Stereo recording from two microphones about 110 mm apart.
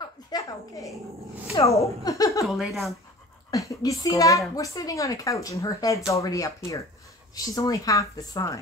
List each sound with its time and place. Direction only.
0.3 s a sound: 35° left (ahead or behind)
1.6 s speech: 30° left (ahead or behind)
2.4 s speech: centre (ahead or behind)
3.4 s speech: 30° left (ahead or behind)